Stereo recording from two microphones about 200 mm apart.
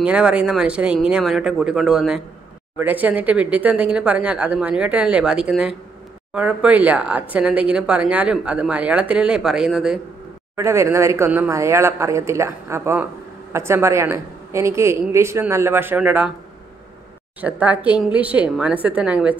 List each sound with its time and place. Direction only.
0.0 s speech: 5° right (ahead or behind)
10.5 s speech: 15° right (ahead or behind)
17.4 s speech: 5° right (ahead or behind)